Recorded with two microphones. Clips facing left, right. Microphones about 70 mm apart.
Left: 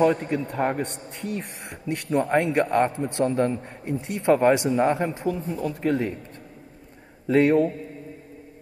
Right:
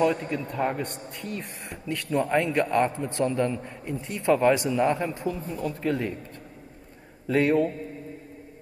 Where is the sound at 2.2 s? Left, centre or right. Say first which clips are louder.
Left 2 dB; left.